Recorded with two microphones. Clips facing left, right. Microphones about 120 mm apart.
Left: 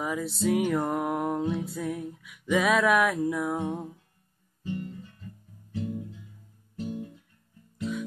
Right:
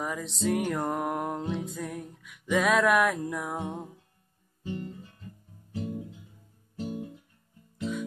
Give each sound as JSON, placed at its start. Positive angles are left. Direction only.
{"t": 0.0, "sound": "music", "side_deg": 5}
{"t": 4.7, "sound": "guitar", "side_deg": -25}
{"t": 5.8, "sound": "music", "side_deg": -25}